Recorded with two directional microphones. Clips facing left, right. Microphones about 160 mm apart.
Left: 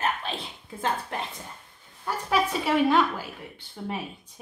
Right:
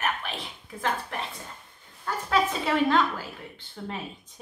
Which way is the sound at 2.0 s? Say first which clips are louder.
Even; 10° left (ahead or behind).